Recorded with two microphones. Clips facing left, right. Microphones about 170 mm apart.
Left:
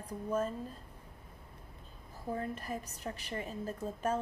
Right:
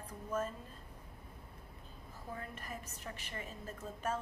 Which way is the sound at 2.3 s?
35° left (ahead or behind).